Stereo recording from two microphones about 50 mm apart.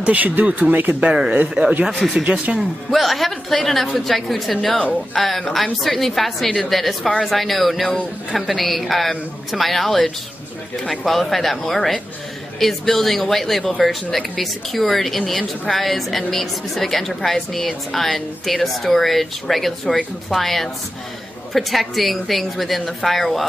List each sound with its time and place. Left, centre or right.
0.0 s speech: right
1.1 s speech: centre
1.9 s a woman's voice: centre
2.2 s speech: right
2.9 s a woman's voice: centre